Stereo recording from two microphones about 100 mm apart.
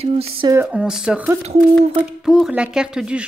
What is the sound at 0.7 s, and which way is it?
Speech, 5° right (ahead or behind).